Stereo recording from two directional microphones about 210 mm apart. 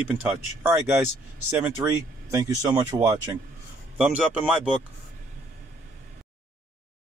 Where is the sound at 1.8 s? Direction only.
15° right (ahead or behind).